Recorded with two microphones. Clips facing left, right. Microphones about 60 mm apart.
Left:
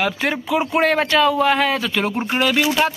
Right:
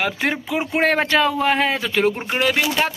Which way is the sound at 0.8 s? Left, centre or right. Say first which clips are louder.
Right 1 dB; right.